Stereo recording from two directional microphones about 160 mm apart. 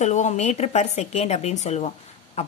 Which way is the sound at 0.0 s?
45° left (ahead or behind).